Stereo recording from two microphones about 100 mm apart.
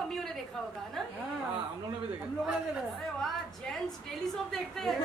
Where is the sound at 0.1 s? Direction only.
5° left (ahead or behind).